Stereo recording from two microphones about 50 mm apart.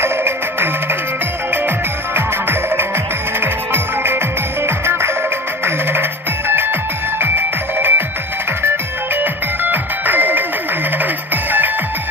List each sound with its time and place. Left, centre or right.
0.0 s music: right
2.1 s music: right